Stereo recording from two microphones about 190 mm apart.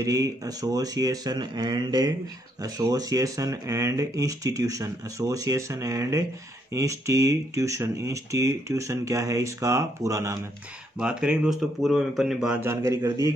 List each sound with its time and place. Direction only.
0.0 s speech: 15° right (ahead or behind)
11.0 s speech: 5° right (ahead or behind)